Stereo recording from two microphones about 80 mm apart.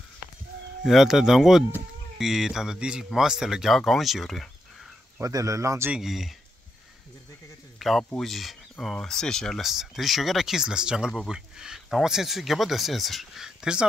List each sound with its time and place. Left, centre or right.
0.8 s speech: centre
5.2 s speech: right
5.9 s speech: centre
7.8 s speech: centre